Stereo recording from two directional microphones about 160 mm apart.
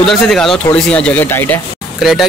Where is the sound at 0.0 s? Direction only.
Centre (ahead or behind).